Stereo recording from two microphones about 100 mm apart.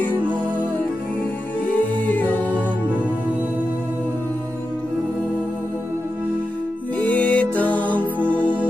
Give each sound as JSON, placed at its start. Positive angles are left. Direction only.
{"t": 2.0, "sound": "music", "side_deg": 15}
{"t": 7.0, "sound": "music", "side_deg": 15}